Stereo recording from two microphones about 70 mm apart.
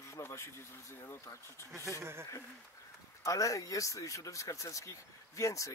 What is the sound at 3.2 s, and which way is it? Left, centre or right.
Speech, left.